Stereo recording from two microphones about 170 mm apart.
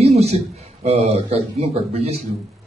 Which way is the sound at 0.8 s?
40° right (ahead or behind).